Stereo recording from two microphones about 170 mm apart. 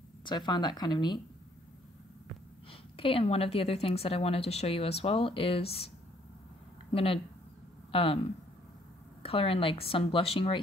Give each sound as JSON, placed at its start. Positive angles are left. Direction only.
{"t": 0.2, "sound": "speech", "side_deg": 25}
{"t": 3.0, "sound": "a woman's voice", "side_deg": 35}
{"t": 6.9, "sound": "speech", "side_deg": 35}
{"t": 9.2, "sound": "a woman's voice", "side_deg": 35}